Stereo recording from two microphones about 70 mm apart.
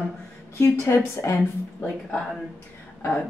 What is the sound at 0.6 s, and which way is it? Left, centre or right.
Speech, left.